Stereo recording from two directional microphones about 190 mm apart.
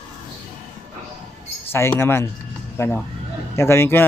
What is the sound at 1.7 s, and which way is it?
Speech, 10° left (ahead or behind).